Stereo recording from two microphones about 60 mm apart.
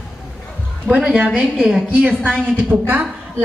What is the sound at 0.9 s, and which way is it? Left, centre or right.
A woman's voice, centre.